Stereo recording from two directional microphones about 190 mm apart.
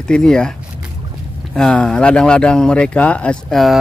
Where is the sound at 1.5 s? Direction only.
5° left (ahead or behind).